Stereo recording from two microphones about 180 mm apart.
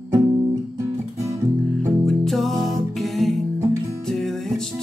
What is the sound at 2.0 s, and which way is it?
Music, centre (ahead or behind).